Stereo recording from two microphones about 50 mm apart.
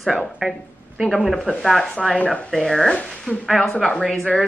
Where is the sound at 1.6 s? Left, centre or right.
Centre.